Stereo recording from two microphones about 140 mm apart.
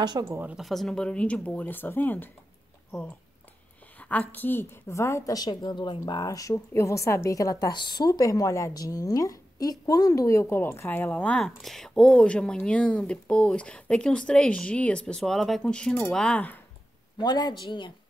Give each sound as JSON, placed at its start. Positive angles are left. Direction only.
{"t": 0.2, "sound": "a woman's voice", "side_deg": -15}
{"t": 4.0, "sound": "a woman's voice", "side_deg": 10}
{"t": 17.2, "sound": "speech", "side_deg": 30}